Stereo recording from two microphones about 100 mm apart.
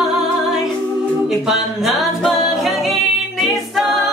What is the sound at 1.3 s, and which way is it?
A capella, 5° right (ahead or behind).